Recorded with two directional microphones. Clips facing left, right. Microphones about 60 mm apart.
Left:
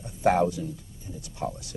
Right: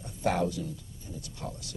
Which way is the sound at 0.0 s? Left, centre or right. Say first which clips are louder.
Left 6 dB; left.